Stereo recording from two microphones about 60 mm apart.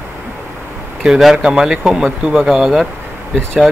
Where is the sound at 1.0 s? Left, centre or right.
Centre.